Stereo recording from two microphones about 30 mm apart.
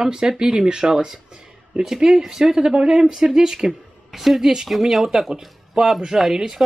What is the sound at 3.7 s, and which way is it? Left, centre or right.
Speech, centre.